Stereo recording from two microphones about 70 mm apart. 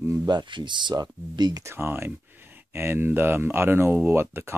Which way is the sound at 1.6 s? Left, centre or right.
Right.